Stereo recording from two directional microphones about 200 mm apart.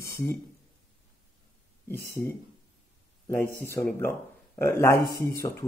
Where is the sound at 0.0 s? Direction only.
15° left (ahead or behind).